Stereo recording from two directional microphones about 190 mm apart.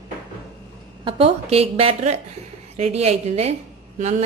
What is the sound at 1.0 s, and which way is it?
A woman's voice, 30° right (ahead or behind).